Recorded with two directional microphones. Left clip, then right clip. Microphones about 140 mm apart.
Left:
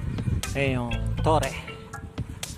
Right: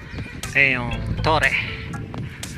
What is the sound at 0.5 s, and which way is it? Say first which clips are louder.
Music: right 10 dB; 20° left (ahead or behind).